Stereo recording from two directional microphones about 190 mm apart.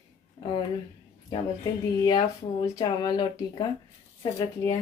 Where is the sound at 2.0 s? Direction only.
20° left (ahead or behind).